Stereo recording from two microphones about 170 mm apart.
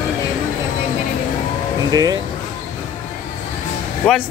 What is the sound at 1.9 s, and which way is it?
Speech, 20° right (ahead or behind).